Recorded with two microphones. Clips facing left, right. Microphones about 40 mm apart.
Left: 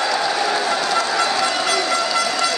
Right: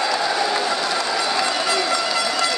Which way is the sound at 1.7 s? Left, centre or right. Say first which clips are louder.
Left 2 dB; centre.